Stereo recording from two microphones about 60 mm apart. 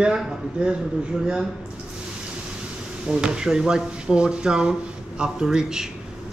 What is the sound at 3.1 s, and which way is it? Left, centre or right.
Speech, centre.